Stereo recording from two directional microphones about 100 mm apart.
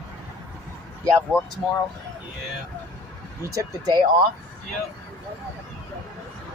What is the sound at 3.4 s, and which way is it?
Speech, 35° right (ahead or behind).